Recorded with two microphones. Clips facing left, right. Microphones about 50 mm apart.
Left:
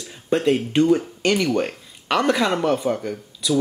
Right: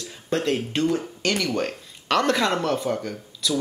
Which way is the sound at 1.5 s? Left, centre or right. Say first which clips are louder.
Left 3 dB; centre.